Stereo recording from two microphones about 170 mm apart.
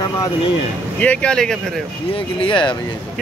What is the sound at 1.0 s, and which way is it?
Speech, 5° left (ahead or behind).